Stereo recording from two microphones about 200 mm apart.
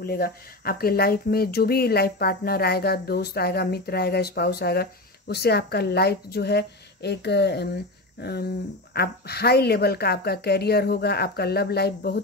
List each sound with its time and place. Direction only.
0.0 s a woman's voice: 50° left (ahead or behind)